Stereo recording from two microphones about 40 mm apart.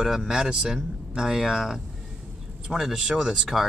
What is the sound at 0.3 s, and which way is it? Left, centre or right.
Speech, centre.